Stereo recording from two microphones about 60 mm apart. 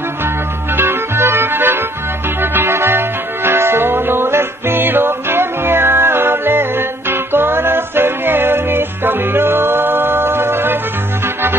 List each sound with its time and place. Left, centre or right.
0.7 s music: right